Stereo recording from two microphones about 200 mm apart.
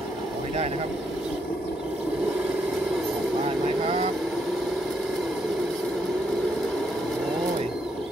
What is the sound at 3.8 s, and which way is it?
Vehicle, 30° right (ahead or behind).